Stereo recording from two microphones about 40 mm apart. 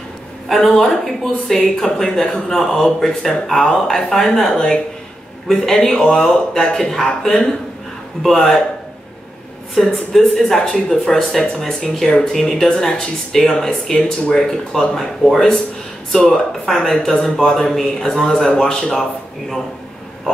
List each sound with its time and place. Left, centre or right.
0.6 s speech: centre
9.8 s a woman's voice: centre
11.8 s speech: left
12.2 s speech: centre